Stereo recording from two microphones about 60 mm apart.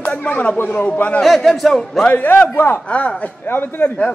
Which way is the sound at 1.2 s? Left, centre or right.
Centre.